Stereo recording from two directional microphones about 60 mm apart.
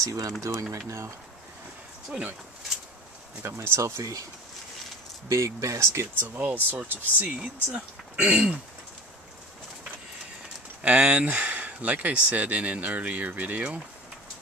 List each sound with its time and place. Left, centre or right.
0.0 s speech: right
3.4 s speech: right
5.3 s speech: right
6.1 s speech: right
7.3 s speech: centre
10.8 s speech: right